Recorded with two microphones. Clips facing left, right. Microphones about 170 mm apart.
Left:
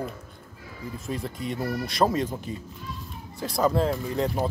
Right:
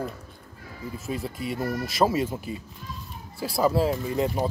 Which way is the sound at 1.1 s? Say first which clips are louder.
Right 1 dB; 5° right (ahead or behind).